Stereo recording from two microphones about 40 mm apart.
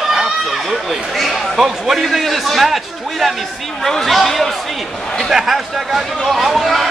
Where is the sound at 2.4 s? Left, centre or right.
Centre.